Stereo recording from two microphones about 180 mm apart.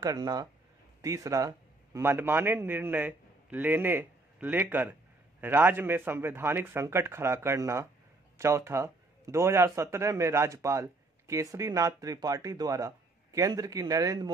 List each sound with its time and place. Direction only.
0.0 s a man's voice: 20° right (ahead or behind)